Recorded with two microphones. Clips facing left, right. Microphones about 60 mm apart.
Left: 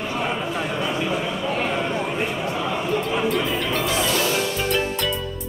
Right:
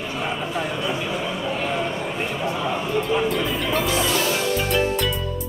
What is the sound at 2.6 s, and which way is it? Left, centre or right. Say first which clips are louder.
Music: left 1 dB; centre.